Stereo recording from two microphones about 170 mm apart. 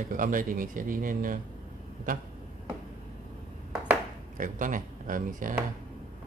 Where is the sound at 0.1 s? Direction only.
50° right (ahead or behind).